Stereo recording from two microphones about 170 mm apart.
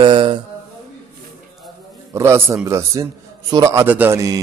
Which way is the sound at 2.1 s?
15° right (ahead or behind).